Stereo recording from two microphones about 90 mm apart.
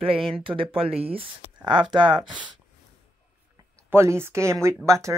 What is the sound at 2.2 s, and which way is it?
Speech, 60° right (ahead or behind).